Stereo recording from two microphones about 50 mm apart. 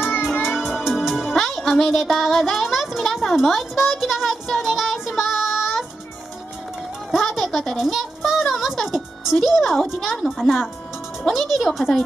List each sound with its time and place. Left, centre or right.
0.2 s music: centre
1.8 s a woman's voice: centre
5.2 s child singing: centre
7.2 s a woman's voice: centre
7.7 s child singing: centre
8.6 s music: centre
10.3 s a woman's voice: centre